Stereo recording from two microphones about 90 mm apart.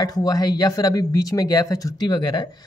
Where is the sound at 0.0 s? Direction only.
45° left (ahead or behind).